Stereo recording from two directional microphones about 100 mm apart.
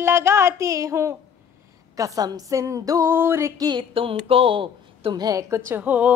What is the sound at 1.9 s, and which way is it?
A woman's voice, 35° right (ahead or behind).